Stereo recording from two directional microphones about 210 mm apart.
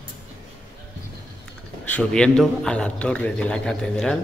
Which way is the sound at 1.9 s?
5° left (ahead or behind).